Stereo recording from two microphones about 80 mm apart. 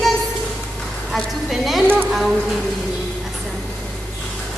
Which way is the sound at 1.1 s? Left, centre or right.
Centre.